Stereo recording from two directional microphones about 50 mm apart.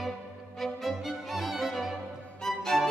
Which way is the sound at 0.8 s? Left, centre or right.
Centre.